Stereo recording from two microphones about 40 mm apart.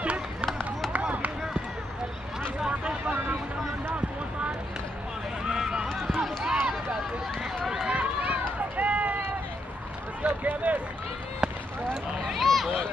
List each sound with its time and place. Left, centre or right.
0.0 s run: right
5.4 s run: centre
5.9 s run: centre
6.4 s run: centre
7.9 s run: right
10.2 s run: right
11.4 s run: centre
12.2 s a sound: centre